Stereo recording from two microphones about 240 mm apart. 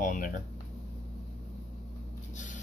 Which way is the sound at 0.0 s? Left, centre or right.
Left.